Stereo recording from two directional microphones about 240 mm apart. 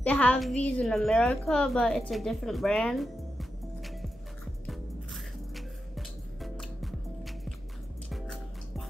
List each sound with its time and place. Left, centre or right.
0.0 s a woman's voice: centre
4.6 s music: centre